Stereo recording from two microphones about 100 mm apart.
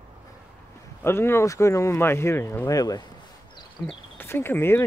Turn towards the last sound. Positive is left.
turn(degrees=25)  # may be behind; listen again after turning